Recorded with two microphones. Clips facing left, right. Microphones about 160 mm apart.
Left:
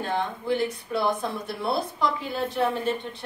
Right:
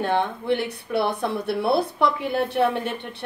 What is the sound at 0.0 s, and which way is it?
A woman's voice, 65° right (ahead or behind).